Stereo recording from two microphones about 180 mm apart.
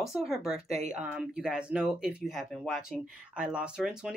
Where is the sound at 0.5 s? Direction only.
35° right (ahead or behind).